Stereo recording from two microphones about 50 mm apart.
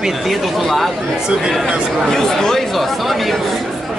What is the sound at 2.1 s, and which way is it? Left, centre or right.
Speech, centre.